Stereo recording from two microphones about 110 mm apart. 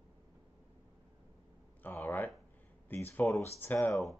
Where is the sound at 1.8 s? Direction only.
15° left (ahead or behind).